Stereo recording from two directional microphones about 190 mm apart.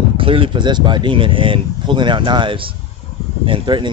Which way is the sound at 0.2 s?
30° right (ahead or behind).